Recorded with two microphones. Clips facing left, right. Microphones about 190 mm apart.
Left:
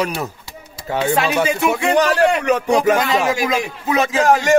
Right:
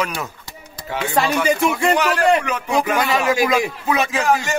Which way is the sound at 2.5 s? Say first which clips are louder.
Left 5 dB; 40° left (ahead or behind).